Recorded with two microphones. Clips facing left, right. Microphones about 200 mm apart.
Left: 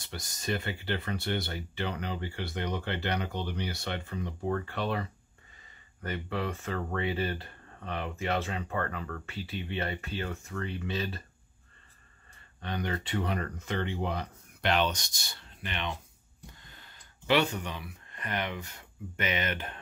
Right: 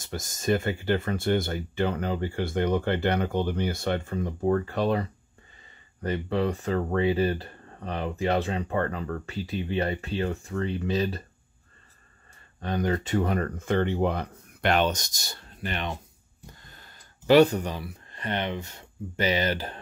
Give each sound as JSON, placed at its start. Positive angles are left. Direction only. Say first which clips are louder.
{"t": 0.0, "sound": "speech", "louder": "right 8 dB", "side_deg": -45}
{"t": 12.5, "sound": "speech", "louder": "right 7 dB", "side_deg": -45}